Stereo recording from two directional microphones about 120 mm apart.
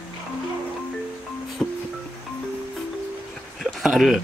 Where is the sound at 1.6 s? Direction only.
5° left (ahead or behind).